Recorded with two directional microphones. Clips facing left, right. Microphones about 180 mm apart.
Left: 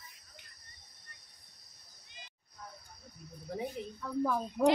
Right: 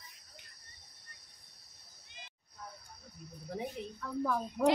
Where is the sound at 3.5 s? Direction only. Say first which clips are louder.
Left 1 dB; 5° left (ahead or behind).